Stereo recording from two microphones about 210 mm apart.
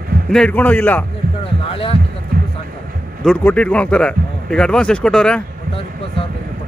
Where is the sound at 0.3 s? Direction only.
5° left (ahead or behind).